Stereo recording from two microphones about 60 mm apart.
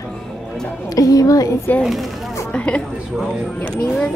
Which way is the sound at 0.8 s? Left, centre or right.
Left.